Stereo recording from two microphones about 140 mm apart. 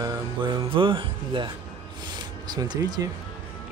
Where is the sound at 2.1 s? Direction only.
30° right (ahead or behind).